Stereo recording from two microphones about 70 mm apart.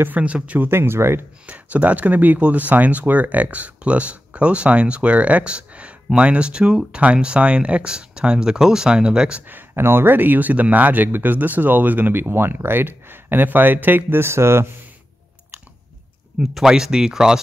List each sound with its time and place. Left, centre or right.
0.0 s speech: right
1.4 s speech: centre
9.5 s speech: right
16.3 s speech: centre